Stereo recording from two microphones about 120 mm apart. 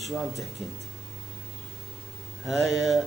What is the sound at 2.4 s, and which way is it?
Speech, centre (ahead or behind).